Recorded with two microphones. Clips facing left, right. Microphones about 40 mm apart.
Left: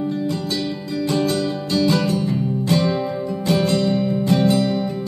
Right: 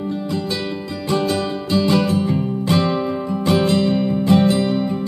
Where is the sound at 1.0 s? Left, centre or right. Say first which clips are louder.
Even; right.